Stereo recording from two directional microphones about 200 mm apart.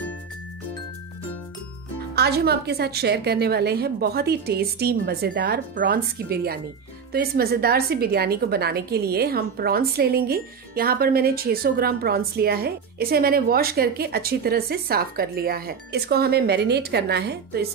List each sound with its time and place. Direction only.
2.1 s a woman's voice: 55° right (ahead or behind)